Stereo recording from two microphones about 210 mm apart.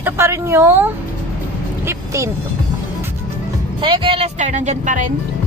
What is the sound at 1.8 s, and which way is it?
Vehicle, 15° right (ahead or behind).